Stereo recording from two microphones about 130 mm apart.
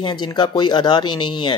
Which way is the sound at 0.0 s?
35° left (ahead or behind).